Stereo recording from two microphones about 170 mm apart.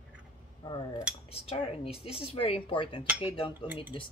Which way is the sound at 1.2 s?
35° left (ahead or behind).